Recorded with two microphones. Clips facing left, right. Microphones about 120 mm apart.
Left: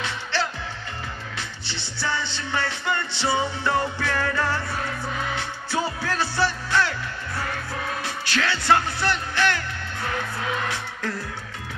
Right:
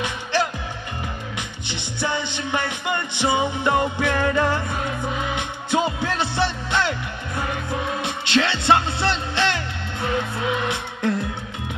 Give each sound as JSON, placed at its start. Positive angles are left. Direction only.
{"t": 0.0, "sound": "music", "side_deg": -15}
{"t": 1.7, "sound": "music", "side_deg": -15}